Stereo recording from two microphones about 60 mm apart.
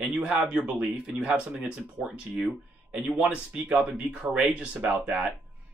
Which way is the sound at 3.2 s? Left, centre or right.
Right.